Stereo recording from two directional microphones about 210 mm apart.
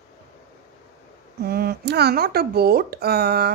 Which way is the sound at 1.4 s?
50° right (ahead or behind).